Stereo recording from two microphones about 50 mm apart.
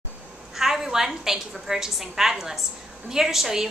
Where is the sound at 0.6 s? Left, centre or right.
Centre.